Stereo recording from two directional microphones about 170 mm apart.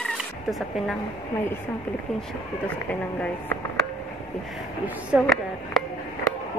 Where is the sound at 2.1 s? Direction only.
10° left (ahead or behind).